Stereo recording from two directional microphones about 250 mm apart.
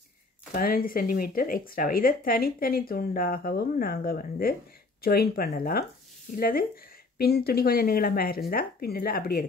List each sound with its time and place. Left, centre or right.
0.5 s speech: left
7.2 s speech: left